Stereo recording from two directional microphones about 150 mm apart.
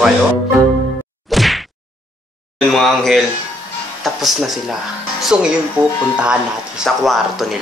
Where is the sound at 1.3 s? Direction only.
Centre (ahead or behind).